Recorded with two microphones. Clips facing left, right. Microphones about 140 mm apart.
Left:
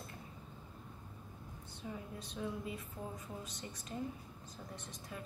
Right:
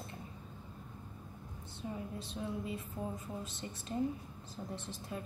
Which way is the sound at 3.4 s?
25° right (ahead or behind).